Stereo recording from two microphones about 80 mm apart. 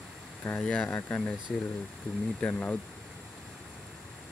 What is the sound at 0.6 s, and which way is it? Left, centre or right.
Speech, centre.